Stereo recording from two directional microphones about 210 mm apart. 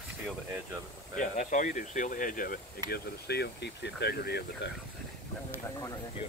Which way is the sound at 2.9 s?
50° left (ahead or behind).